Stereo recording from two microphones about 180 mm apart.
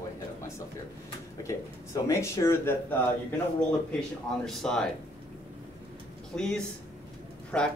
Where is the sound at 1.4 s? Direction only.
15° left (ahead or behind).